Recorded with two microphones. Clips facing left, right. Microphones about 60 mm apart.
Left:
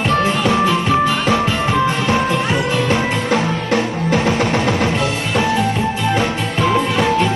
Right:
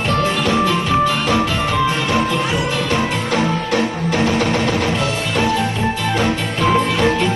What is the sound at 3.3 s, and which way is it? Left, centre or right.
Music, left.